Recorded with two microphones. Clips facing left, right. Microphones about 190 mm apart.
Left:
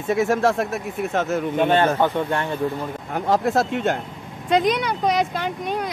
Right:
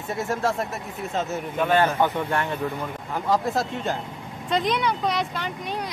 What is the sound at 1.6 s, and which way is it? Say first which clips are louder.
Speech: left 2 dB; 25° left (ahead or behind).